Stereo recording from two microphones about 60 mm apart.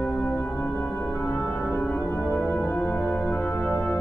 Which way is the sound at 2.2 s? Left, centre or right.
Centre.